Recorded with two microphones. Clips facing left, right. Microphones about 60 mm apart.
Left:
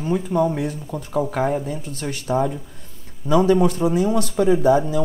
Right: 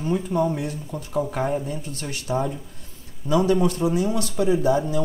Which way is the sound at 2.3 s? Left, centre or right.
Left.